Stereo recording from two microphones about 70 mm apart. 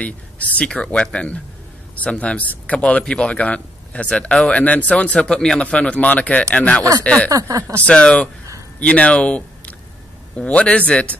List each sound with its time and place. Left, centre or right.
0.0 s speech: left
7.2 s speech: right
7.8 s speech: centre